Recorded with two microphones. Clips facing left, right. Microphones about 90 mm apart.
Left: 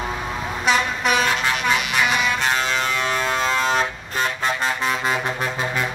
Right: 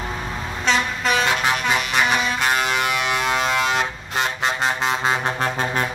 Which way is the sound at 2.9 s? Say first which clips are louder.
Right 1 dB; 10° right (ahead or behind).